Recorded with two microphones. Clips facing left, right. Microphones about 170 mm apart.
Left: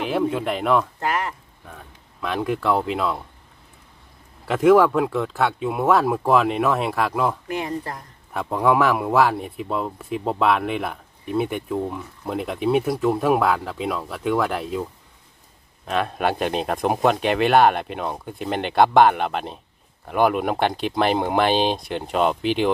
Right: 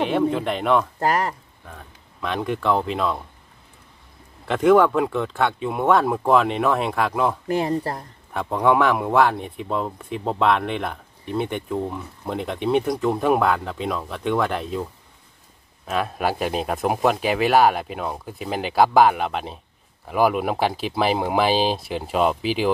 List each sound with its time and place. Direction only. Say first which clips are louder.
0.0 s speech: right 2 dB; centre (ahead or behind)
0.9 s speech: right 3 dB; 40° right (ahead or behind)
1.7 s speech: even; centre (ahead or behind)
4.5 s speech: left 1 dB; centre (ahead or behind)
7.4 s speech: right 5 dB; 35° right (ahead or behind)
8.3 s speech: even; centre (ahead or behind)
15.9 s speech: left 1 dB; 5° right (ahead or behind)